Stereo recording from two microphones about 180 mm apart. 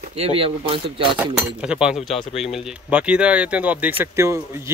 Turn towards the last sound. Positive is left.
turn(degrees=-15)  # may be behind; listen again after turning